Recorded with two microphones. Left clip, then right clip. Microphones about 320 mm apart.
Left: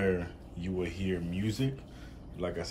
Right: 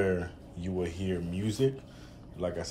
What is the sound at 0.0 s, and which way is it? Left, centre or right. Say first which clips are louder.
Speech: right 1 dB; centre.